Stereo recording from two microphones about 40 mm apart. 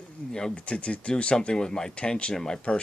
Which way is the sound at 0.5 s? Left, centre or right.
Left.